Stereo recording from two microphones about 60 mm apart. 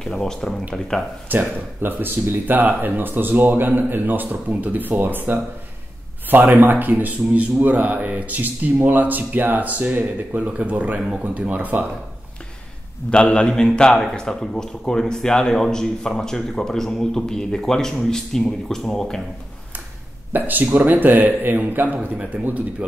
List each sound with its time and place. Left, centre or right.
0.0 s a man's voice: centre
1.3 s speech: right
13.1 s a man's voice: centre
20.3 s speech: right
22.1 s speech: centre